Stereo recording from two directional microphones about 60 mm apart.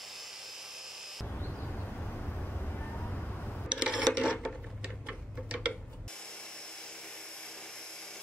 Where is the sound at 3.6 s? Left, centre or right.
Centre.